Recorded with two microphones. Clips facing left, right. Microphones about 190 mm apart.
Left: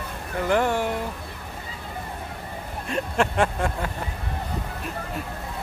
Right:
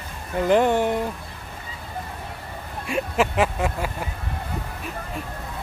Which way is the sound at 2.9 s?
5° right (ahead or behind).